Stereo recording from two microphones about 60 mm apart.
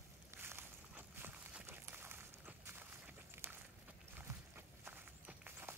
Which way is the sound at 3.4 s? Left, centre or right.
Right.